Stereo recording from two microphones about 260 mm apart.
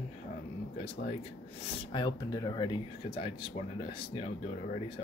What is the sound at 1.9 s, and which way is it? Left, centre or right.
Speech, centre.